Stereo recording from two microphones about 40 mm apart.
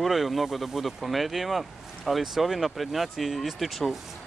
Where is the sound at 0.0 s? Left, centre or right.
Centre.